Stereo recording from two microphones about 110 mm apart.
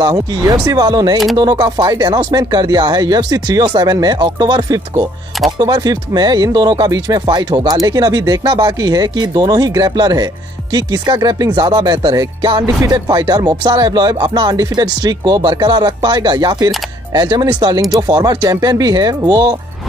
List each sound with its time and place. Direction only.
0.0 s speech: 35° right (ahead or behind)